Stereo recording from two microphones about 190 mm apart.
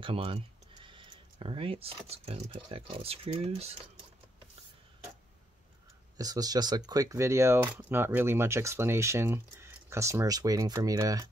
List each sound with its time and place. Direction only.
0.0 s speech: 30° right (ahead or behind)
6.1 s speech: 20° right (ahead or behind)